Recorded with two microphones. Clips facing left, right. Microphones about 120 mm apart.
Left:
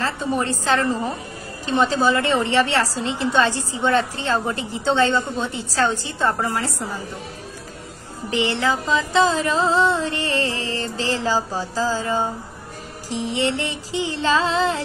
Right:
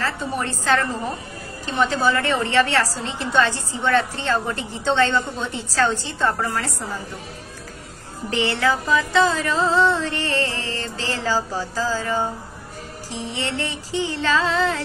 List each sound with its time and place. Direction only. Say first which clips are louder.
0.0 s music: left 2 dB; 25° left (ahead or behind)
8.3 s music: even; 15° left (ahead or behind)